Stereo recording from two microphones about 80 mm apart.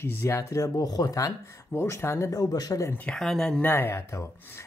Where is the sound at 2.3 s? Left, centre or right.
Left.